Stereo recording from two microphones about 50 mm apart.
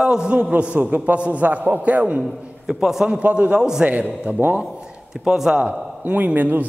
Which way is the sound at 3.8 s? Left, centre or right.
Right.